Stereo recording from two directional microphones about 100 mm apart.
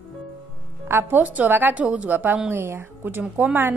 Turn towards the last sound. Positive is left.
turn(degrees=-20)  # may be behind; listen again after turning